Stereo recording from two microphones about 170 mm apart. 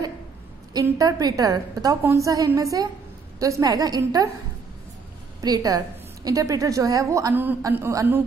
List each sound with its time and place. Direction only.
0.7 s a woman's voice: 20° right (ahead or behind)
5.4 s a woman's voice: 20° right (ahead or behind)